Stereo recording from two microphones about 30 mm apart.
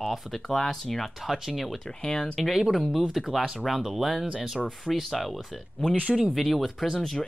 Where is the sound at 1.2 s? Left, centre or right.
Centre.